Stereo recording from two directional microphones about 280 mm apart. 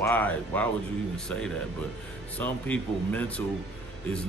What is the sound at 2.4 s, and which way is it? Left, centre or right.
Speech, centre.